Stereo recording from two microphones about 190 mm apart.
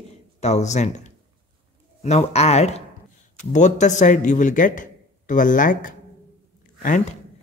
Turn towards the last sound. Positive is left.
turn(degrees=45)  # may be behind; listen again after turning